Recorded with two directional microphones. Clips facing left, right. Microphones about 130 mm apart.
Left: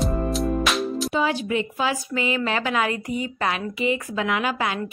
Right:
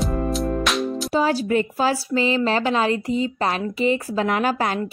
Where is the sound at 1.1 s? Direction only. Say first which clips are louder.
Right 6 dB; 40° right (ahead or behind).